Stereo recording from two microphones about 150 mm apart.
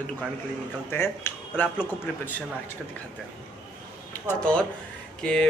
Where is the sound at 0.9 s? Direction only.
15° left (ahead or behind).